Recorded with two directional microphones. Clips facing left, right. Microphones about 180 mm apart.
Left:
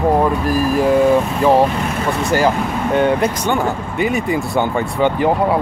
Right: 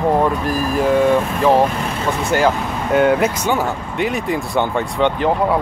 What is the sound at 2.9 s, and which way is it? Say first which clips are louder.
Speech: right 2 dB; 5° right (ahead or behind).